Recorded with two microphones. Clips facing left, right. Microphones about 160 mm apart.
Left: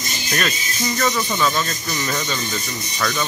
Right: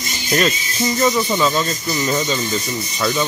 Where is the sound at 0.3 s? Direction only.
25° right (ahead or behind).